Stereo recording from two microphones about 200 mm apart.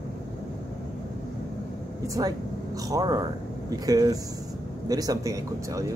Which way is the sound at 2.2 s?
15° right (ahead or behind).